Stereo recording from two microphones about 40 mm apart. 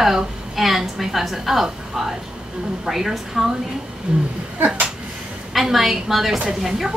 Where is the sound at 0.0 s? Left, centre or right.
Centre.